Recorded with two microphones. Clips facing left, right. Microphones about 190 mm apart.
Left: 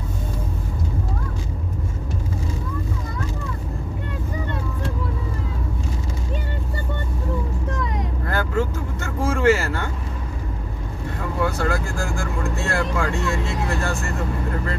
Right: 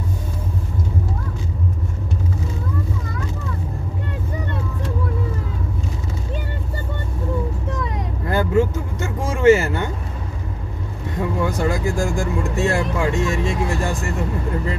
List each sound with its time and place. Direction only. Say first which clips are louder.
8.3 s vehicle: right 6 dB; 15° right (ahead or behind)
11.4 s speech: right 1 dB; 15° right (ahead or behind)